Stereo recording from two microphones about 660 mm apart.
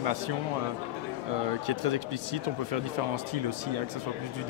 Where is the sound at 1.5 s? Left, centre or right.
Right.